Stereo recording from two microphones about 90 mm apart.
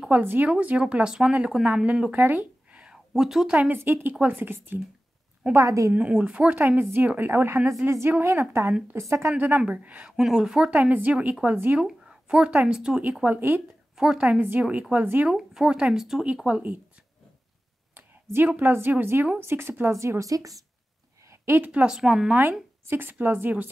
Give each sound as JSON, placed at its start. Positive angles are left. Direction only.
{"t": 0.1, "sound": "speech", "side_deg": -20}
{"t": 3.7, "sound": "speech", "side_deg": -25}
{"t": 5.5, "sound": "speech", "side_deg": -35}
{"t": 5.9, "sound": "speech", "side_deg": -15}
{"t": 9.4, "sound": "speech", "side_deg": -20}
{"t": 11.8, "sound": "speech", "side_deg": -10}
{"t": 13.9, "sound": "speech", "side_deg": -10}
{"t": 15.2, "sound": "speech", "side_deg": -5}
{"t": 17.9, "sound": "a sound", "side_deg": -25}
{"t": 18.6, "sound": "speech", "side_deg": -25}
{"t": 21.3, "sound": "a sound", "side_deg": -30}
{"t": 21.6, "sound": "speech", "side_deg": -10}
{"t": 22.4, "sound": "speech", "side_deg": -25}